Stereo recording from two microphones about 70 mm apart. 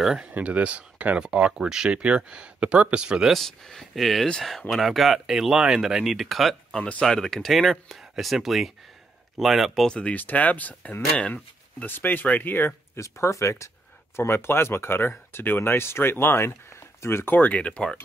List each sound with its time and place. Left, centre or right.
0.0 s speech: centre
0.3 s speech: centre
3.3 s speech: centre
6.8 s speech: centre
7.1 s speech: centre
9.8 s speech: centre; by 13.0 s left
13.0 s speech: left; by 17.9 s centre